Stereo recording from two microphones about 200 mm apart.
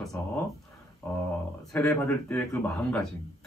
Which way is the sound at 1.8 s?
5° left (ahead or behind).